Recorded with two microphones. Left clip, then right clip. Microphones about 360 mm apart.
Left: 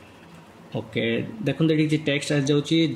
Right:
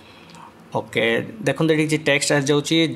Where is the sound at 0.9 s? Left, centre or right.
Centre.